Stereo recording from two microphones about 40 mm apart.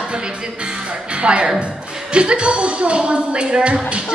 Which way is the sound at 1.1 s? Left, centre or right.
Right.